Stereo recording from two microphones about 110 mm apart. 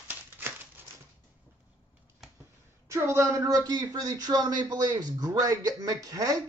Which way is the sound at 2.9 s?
25° right (ahead or behind).